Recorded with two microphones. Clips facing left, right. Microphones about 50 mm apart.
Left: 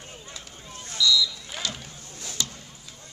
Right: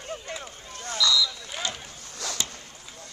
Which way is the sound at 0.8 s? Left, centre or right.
Right.